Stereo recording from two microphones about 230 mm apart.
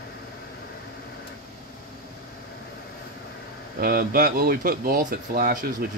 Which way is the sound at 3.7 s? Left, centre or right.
Right.